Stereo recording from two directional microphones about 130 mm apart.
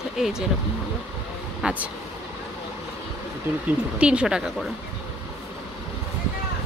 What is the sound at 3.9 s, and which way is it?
Speech, 10° right (ahead or behind).